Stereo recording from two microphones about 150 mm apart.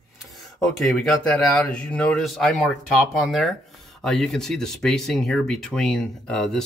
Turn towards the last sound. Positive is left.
turn(degrees=5)  # may be behind; listen again after turning